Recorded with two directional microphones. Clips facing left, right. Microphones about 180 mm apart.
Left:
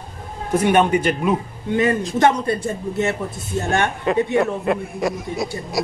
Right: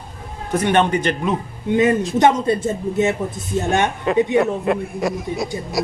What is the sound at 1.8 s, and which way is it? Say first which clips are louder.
A man's voice: right 2 dB; 20° right (ahead or behind).